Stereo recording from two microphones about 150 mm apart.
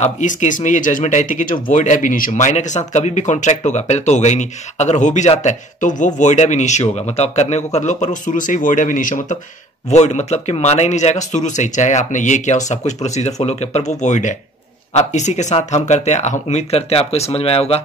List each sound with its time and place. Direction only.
0.0 s speech: 55° left (ahead or behind)
9.8 s speech: 50° left (ahead or behind)